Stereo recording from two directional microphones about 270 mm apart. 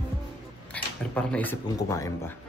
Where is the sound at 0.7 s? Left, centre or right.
Centre.